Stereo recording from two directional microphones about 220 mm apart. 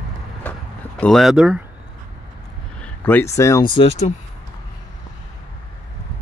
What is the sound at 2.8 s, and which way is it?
Speech, 10° left (ahead or behind).